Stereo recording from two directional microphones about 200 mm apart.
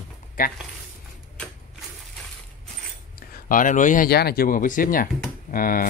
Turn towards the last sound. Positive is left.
turn(degrees=45)  # may be behind; listen again after turning